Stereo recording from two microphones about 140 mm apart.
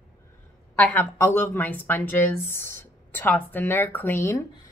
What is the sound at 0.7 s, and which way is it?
Speech, 10° left (ahead or behind).